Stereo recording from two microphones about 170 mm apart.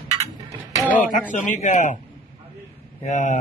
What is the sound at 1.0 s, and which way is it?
A man's voice, 50° left (ahead or behind).